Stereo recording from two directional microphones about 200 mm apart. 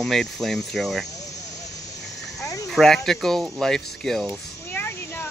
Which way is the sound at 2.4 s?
15° left (ahead or behind).